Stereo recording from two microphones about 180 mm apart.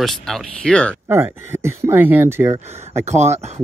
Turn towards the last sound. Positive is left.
turn(degrees=-40)  # may be behind; listen again after turning